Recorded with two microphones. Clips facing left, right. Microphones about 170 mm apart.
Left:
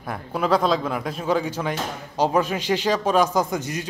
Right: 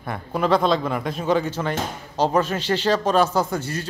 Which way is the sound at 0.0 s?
5° left (ahead or behind).